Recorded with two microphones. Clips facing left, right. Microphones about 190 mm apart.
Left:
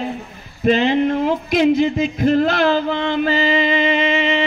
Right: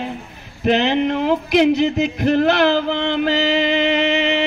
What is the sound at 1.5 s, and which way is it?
Music, 65° right (ahead or behind).